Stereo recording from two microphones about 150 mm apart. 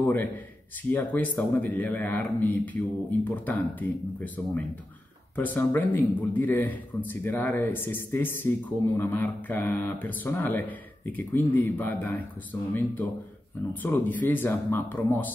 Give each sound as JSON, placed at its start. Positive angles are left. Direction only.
{"t": 0.0, "sound": "a man's voice", "side_deg": 15}
{"t": 13.8, "sound": "a man's voice", "side_deg": 15}